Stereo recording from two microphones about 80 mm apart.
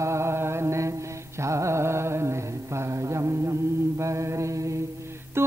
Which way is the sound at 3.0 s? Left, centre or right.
Right.